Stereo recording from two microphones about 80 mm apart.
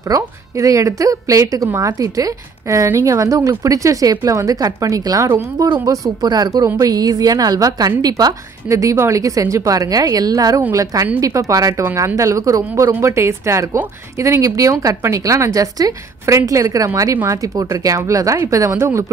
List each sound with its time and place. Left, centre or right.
0.1 s a woman's voice: right
6.2 s a woman's voice: right
8.6 s a woman's voice: right